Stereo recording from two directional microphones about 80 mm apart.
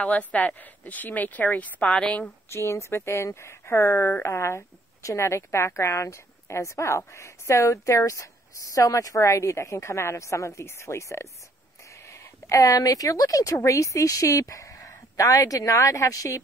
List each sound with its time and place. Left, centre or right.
0.0 s a woman's voice: centre
2.5 s a woman's voice: left